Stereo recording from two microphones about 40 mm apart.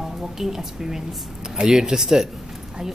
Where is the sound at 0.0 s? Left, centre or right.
Centre.